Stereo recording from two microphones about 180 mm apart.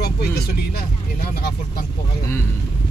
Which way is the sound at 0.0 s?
60° left (ahead or behind).